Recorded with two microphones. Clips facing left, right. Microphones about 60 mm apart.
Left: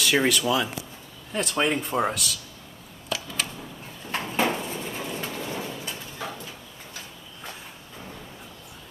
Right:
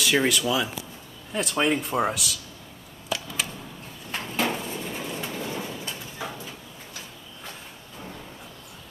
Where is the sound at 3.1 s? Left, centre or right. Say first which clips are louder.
Right 1 dB; centre.